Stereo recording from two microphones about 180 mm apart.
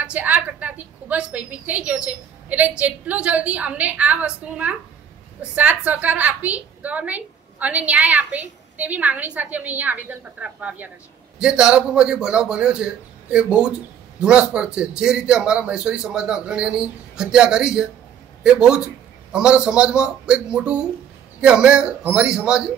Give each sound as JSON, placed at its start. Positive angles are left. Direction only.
{"t": 0.0, "sound": "a woman's voice", "side_deg": -10}